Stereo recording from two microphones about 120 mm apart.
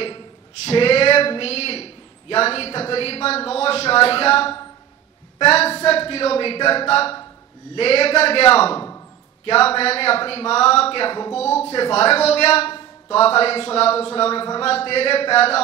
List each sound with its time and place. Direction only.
0.7 s a man's voice: 50° left (ahead or behind)